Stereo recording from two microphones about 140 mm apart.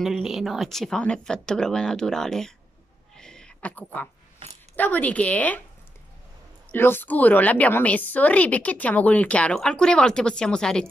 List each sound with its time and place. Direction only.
0.0 s speech: centre (ahead or behind)
3.2 s a sound: 5° left (ahead or behind)
4.7 s speech: 10° left (ahead or behind)
6.7 s speech: 15° left (ahead or behind)